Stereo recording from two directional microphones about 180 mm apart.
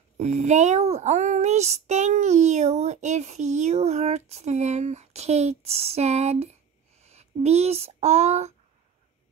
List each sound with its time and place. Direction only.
0.2 s child singing: 40° right (ahead or behind)
7.0 s speech: 35° right (ahead or behind)